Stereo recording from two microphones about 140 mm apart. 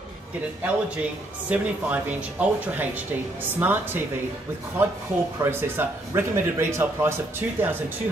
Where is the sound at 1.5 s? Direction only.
10° right (ahead or behind).